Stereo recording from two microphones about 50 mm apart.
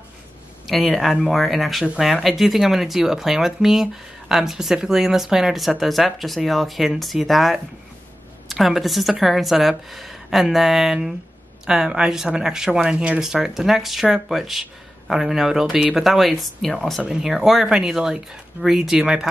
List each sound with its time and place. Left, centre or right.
0.7 s speech: centre; by 13.2 s right
13.2 s speech: centre
17.1 s speech: centre